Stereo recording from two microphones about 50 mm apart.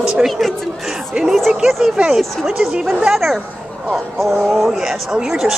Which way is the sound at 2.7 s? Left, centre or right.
Centre.